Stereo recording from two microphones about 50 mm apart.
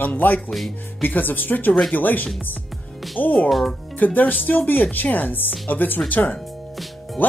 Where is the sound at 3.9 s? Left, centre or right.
Left.